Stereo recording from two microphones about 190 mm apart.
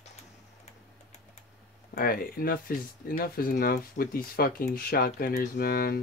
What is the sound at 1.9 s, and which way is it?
Speech, 50° left (ahead or behind).